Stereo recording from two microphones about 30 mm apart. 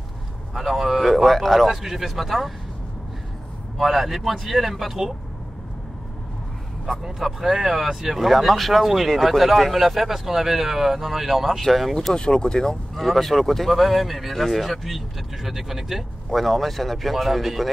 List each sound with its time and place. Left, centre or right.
0.6 s speech: centre
1.1 s speech: centre
1.7 s speech: centre
3.8 s speech: centre
7.2 s speech: centre
11.6 s speech: centre
12.1 s speech: left
12.9 s speech: centre
16.3 s speech: centre